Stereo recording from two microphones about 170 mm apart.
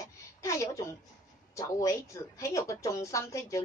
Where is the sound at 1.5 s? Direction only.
20° left (ahead or behind).